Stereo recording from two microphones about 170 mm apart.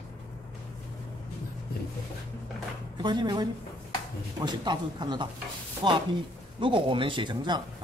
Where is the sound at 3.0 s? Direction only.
25° right (ahead or behind).